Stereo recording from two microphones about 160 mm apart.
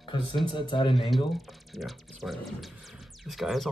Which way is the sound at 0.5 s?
30° left (ahead or behind).